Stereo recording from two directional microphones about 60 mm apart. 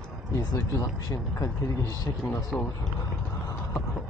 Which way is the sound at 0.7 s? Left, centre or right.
Left.